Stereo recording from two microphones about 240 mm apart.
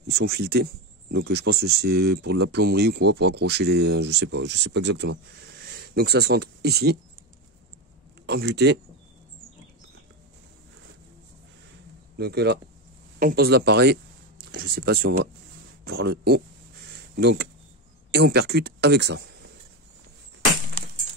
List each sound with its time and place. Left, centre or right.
0.0 s speech: right
8.3 s speech: right
12.2 s speech: right